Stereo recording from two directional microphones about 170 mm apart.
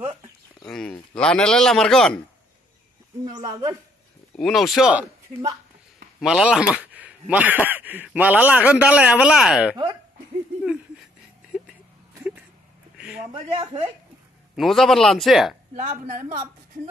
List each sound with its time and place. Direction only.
0.7 s a sound: 5° left (ahead or behind)
1.1 s a man's voice: 5° left (ahead or behind)
3.3 s speech: 25° right (ahead or behind)
4.4 s a man's voice: centre (ahead or behind)
6.1 s a man's voice: 5° right (ahead or behind)
12.2 s a sound: 5° right (ahead or behind)
13.3 s speech: 30° right (ahead or behind)
14.5 s a man's voice: centre (ahead or behind)
15.7 s a woman's voice: 45° right (ahead or behind)